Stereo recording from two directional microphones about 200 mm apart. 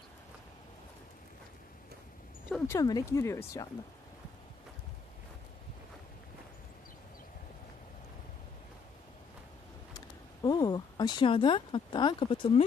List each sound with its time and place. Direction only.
2.5 s speech: 15° left (ahead or behind)
9.9 s speech: 20° left (ahead or behind)